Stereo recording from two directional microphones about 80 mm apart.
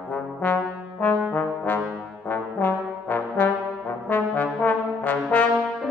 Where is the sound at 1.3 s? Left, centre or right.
Left.